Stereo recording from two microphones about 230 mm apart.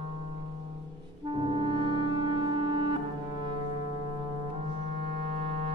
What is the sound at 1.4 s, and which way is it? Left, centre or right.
Music, right.